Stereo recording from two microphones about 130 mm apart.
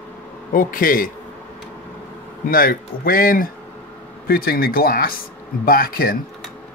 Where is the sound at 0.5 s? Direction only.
90° left.